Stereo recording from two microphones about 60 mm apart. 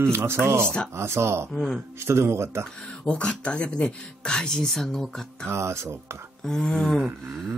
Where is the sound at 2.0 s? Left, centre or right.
Right.